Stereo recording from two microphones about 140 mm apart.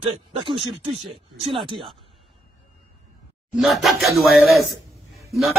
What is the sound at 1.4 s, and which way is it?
Speech, 35° right (ahead or behind).